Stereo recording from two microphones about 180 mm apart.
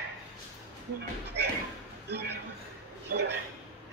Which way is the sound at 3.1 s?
70° right (ahead or behind).